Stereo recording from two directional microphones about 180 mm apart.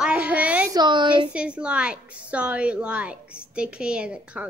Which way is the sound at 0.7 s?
25° right (ahead or behind).